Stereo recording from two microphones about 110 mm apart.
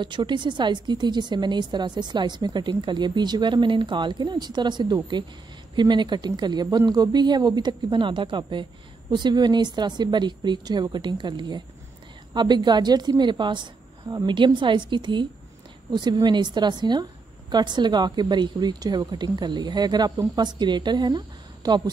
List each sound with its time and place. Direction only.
0.0 s a woman's voice: 45° right (ahead or behind)